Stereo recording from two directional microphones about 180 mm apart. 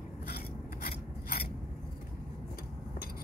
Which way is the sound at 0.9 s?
60° left (ahead or behind).